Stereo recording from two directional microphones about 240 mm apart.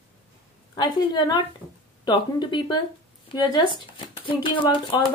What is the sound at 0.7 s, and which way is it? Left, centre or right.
A woman's voice, centre.